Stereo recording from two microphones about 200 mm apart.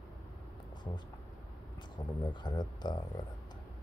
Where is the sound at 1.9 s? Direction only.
20° left (ahead or behind).